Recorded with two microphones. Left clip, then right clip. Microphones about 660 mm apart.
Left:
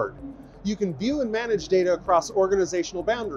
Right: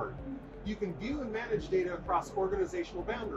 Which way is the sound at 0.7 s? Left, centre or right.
Left.